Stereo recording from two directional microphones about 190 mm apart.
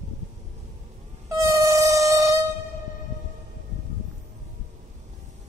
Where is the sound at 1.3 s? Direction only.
15° right (ahead or behind).